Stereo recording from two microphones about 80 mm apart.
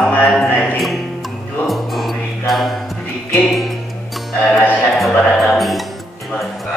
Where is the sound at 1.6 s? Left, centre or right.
Centre.